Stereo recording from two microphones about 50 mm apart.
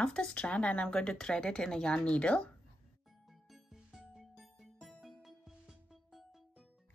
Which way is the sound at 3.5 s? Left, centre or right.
Centre.